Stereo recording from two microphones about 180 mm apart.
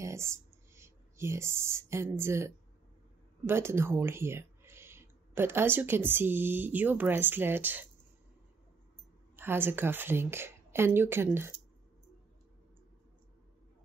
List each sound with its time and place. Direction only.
0.0 s speech: 15° right (ahead or behind)
9.4 s a woman's voice: 10° right (ahead or behind)